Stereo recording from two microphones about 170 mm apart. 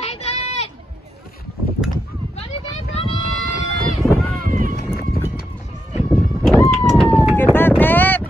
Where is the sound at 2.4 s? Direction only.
35° left (ahead or behind).